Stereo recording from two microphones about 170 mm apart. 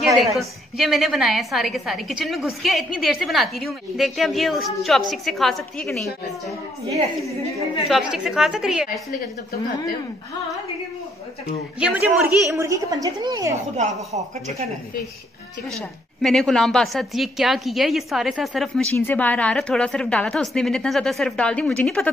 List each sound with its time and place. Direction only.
0.0 s a woman's voice: centre (ahead or behind)
7.9 s a woman's voice: 5° right (ahead or behind)
11.8 s a woman's voice: 5° right (ahead or behind)
12.6 s a woman's voice: 20° right (ahead or behind)
13.7 s a woman's voice: 40° right (ahead or behind)
16.2 s a woman's voice: centre (ahead or behind)
18.9 s a woman's voice: 10° left (ahead or behind)